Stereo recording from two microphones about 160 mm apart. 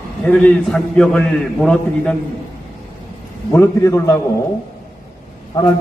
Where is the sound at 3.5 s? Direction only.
15° left (ahead or behind).